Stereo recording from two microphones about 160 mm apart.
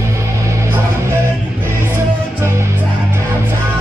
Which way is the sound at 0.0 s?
20° right (ahead or behind).